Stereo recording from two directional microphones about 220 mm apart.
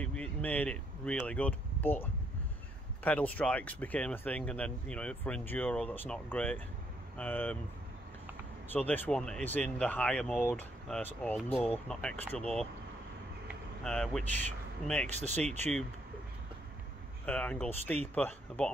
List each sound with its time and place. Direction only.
0.0 s speech: 5° left (ahead or behind)
8.7 s speech: 10° left (ahead or behind)
13.8 s speech: 5° left (ahead or behind)
15.4 s speech: 30° right (ahead or behind)
17.3 s speech: 5° left (ahead or behind)